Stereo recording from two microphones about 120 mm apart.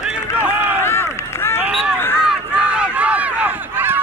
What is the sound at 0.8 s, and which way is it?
Run, 20° left (ahead or behind).